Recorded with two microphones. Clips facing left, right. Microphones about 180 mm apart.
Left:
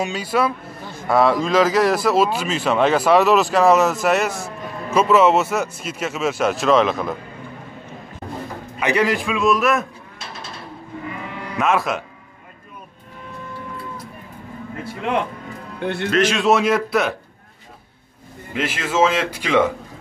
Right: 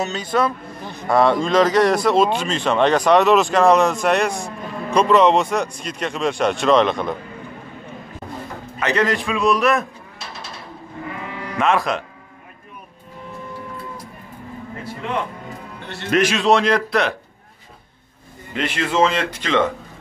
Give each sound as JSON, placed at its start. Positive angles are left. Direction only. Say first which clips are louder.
{"t": 0.0, "sound": "speech", "louder": "even", "side_deg": 10}
{"t": 8.7, "sound": "speech", "louder": "left 1 dB", "side_deg": 10}
{"t": 11.5, "sound": "speech", "louder": "right 1 dB", "side_deg": 0}
{"t": 15.8, "sound": "speech", "louder": "left 13 dB", "side_deg": 55}
{"t": 16.1, "sound": "a man's voice", "louder": "right 1 dB", "side_deg": -15}
{"t": 16.3, "sound": "speech", "louder": "even", "side_deg": 5}
{"t": 18.5, "sound": "speech", "louder": "right 1 dB", "side_deg": 5}